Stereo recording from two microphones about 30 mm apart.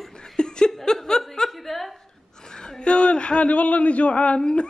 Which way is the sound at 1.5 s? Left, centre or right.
Centre.